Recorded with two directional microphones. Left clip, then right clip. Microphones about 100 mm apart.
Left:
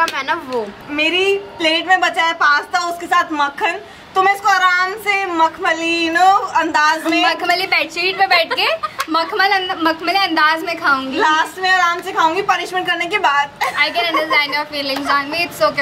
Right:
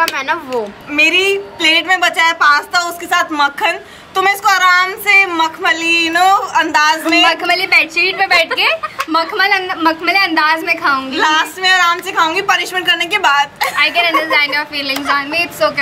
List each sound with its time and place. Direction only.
0.1 s a woman's voice: centre (ahead or behind)
0.9 s a woman's voice: 20° right (ahead or behind)
7.2 s a woman's voice: centre (ahead or behind)
11.1 s a woman's voice: 15° right (ahead or behind)
13.7 s a woman's voice: centre (ahead or behind)